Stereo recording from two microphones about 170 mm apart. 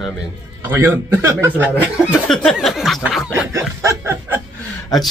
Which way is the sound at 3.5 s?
15° right (ahead or behind).